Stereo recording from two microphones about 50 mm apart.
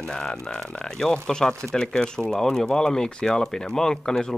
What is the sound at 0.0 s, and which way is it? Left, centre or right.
Speech, centre.